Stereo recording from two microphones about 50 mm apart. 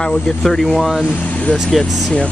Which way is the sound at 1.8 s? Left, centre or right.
Centre.